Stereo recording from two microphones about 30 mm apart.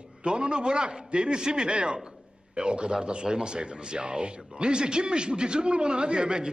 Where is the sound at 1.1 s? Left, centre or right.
Right.